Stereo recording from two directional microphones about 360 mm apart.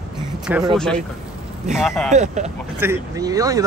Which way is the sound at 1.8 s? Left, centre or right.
Centre.